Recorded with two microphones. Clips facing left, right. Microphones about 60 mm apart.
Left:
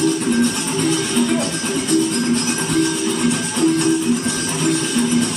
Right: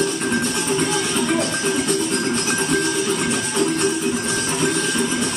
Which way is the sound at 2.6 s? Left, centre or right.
Right.